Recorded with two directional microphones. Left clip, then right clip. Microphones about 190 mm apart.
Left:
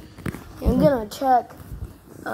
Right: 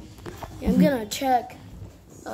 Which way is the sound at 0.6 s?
20° left (ahead or behind).